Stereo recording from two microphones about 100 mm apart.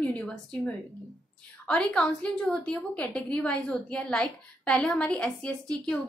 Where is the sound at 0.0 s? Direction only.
5° left (ahead or behind).